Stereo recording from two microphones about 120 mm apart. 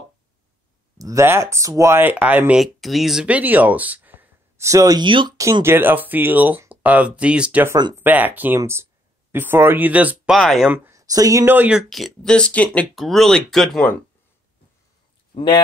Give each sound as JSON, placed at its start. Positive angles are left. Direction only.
{"t": 0.9, "sound": "speech", "side_deg": -25}
{"t": 2.6, "sound": "speech", "side_deg": 0}
{"t": 5.0, "sound": "speech", "side_deg": -40}
{"t": 5.4, "sound": "speech", "side_deg": -25}
{"t": 10.3, "sound": "speech", "side_deg": 0}
{"t": 10.7, "sound": "speech", "side_deg": -25}
{"t": 11.5, "sound": "speech", "side_deg": -15}
{"t": 11.9, "sound": "speech", "side_deg": 0}
{"t": 15.3, "sound": "speech", "side_deg": 45}